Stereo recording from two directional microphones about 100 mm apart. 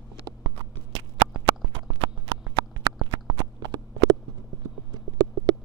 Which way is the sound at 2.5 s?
35° right (ahead or behind).